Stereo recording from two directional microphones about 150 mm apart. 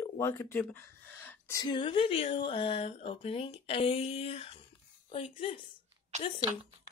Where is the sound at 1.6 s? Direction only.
30° left (ahead or behind).